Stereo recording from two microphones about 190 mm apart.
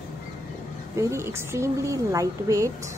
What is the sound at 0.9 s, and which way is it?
A woman's voice, 15° right (ahead or behind).